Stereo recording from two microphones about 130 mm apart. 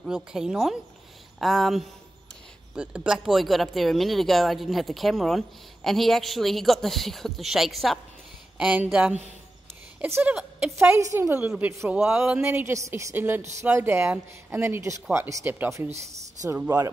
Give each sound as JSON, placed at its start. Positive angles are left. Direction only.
{"t": 0.0, "sound": "speech", "side_deg": -5}
{"t": 8.5, "sound": "speech", "side_deg": -10}
{"t": 10.0, "sound": "speech", "side_deg": -20}